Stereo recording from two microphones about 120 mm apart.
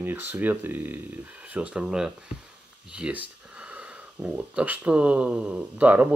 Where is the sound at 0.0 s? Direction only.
15° right (ahead or behind).